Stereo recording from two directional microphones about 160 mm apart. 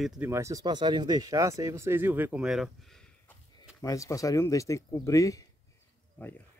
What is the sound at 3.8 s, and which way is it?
Speech, 20° left (ahead or behind).